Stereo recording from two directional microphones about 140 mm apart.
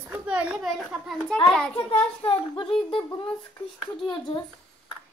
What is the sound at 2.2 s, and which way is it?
Speech, 40° left (ahead or behind).